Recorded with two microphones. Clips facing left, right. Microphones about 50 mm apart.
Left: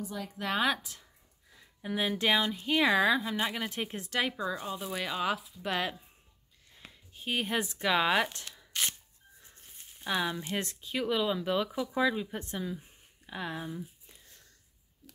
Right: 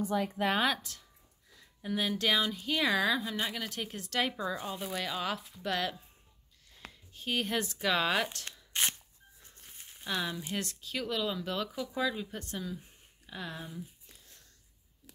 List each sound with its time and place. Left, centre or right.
0.0 s speech: right
0.9 s speech: centre
4.1 s speech: centre
4.9 s speech: centre
8.7 s a sound: right
10.0 s speech: centre